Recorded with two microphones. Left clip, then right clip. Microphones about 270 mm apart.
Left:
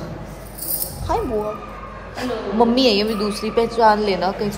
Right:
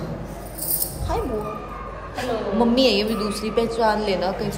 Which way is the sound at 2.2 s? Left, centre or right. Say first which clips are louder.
Left 3 dB; left.